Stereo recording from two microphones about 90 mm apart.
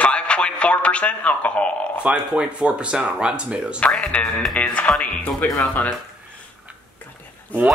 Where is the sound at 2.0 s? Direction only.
10° right (ahead or behind).